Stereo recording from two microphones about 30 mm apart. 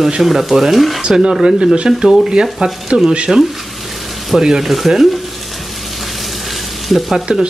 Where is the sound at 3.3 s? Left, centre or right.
Centre.